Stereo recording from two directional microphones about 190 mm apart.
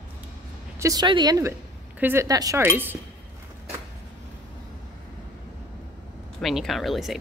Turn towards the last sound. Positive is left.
turn(degrees=0)  # may be behind; listen again after turning